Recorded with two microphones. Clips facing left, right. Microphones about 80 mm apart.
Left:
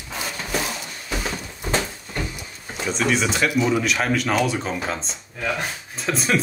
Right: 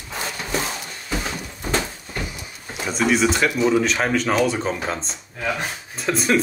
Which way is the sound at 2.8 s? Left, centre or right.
Centre.